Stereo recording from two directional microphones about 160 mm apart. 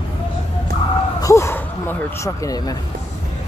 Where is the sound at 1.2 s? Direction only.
15° left (ahead or behind).